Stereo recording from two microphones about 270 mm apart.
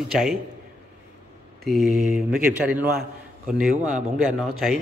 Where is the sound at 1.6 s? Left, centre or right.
Centre.